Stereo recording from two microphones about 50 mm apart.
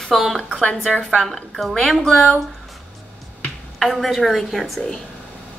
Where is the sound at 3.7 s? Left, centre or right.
Centre.